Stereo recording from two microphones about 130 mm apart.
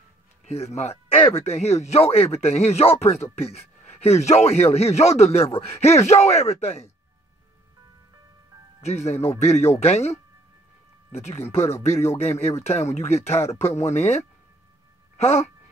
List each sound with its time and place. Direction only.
0.5 s speech: 55° left (ahead or behind)
8.8 s speech: 55° left (ahead or behind)